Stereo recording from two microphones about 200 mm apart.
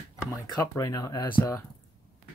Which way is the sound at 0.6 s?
15° left (ahead or behind).